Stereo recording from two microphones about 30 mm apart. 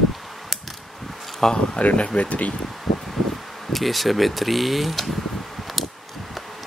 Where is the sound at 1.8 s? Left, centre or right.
Left.